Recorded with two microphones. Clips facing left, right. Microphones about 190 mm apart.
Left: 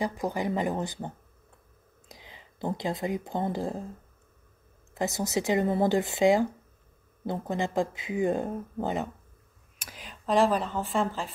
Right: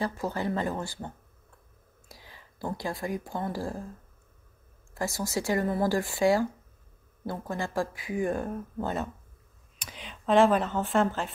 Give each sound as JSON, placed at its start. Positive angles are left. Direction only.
{"t": 0.0, "sound": "speech", "side_deg": 15}
{"t": 4.9, "sound": "speech", "side_deg": 20}
{"t": 9.8, "sound": "speech", "side_deg": 0}